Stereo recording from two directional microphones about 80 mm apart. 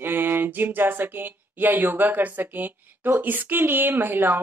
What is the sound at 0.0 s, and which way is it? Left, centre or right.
Speech, right.